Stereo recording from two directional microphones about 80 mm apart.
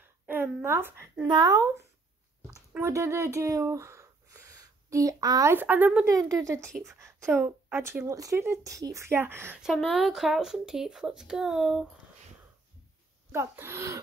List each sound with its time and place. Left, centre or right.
0.3 s a woman's voice: right
1.2 s speech: right
2.8 s speech: right
5.5 s speech: right
6.0 s speech: right
8.0 s speech: right
9.6 s speech: centre
13.3 s speech: right